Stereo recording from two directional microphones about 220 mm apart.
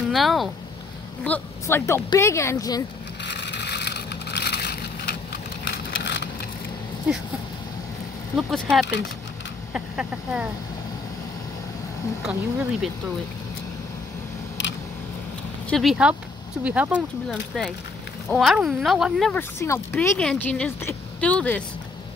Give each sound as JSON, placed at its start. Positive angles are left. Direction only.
{"t": 0.1, "sound": "a woman's voice", "side_deg": 0}
{"t": 3.3, "sound": "vehicle", "side_deg": 50}
{"t": 8.4, "sound": "speech", "side_deg": 0}
{"t": 12.2, "sound": "speech", "side_deg": -5}
{"t": 15.7, "sound": "speech", "side_deg": 0}
{"t": 19.6, "sound": "a woman's voice", "side_deg": 10}